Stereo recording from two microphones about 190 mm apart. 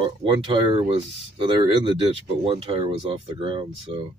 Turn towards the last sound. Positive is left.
turn(degrees=-25)  # may be behind; listen again after turning